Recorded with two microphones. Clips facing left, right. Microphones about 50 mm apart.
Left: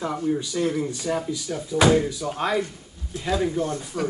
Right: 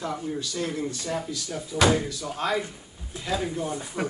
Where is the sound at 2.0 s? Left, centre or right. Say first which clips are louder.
Left 3 dB; centre.